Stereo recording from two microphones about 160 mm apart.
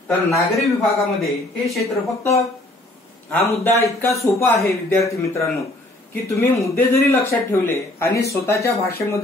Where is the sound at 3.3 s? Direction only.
15° left (ahead or behind).